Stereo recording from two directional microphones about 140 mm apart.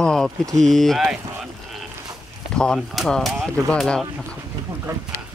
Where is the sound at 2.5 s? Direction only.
5° left (ahead or behind).